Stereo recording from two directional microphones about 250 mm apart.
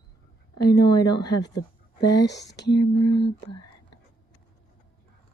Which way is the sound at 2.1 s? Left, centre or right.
Left.